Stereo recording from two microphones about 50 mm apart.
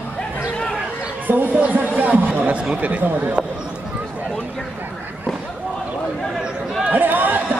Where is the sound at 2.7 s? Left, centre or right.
Right.